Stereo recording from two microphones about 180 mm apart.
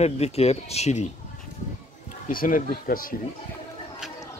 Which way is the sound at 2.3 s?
50° left (ahead or behind).